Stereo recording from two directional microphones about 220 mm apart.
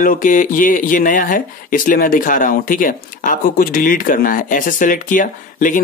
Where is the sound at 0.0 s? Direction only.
40° left (ahead or behind).